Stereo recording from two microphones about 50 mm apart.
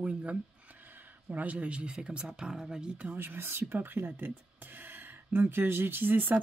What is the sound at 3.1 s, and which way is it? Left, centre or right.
Speech, right.